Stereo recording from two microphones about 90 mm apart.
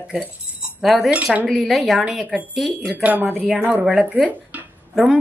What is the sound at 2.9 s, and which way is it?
A woman's voice, 20° right (ahead or behind).